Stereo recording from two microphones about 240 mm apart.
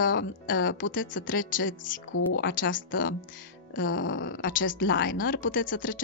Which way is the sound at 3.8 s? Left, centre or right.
Left.